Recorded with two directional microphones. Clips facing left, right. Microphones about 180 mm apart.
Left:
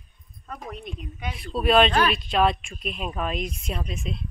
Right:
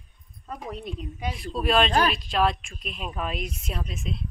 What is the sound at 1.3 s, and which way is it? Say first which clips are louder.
Speech: left 4 dB; centre (ahead or behind).